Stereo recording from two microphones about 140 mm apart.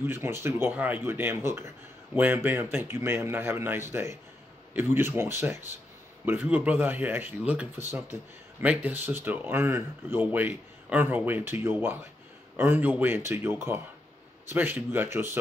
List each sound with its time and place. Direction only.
0.0 s speech: 15° right (ahead or behind)